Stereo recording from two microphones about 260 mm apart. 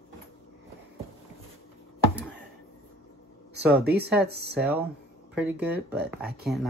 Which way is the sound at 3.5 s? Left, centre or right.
Right.